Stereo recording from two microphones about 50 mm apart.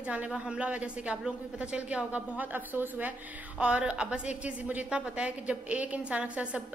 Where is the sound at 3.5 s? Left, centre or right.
Right.